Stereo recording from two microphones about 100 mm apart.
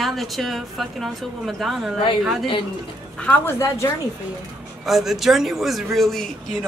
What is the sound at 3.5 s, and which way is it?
Speech, 30° left (ahead or behind).